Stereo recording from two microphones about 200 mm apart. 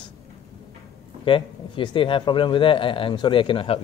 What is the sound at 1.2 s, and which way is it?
A man's voice, 25° left (ahead or behind).